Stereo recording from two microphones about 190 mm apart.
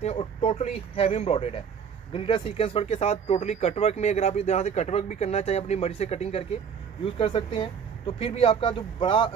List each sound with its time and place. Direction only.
0.0 s speech: 35° left (ahead or behind)